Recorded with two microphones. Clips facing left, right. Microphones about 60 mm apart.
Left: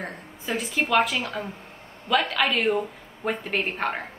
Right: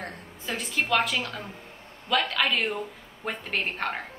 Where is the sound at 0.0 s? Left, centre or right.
Centre.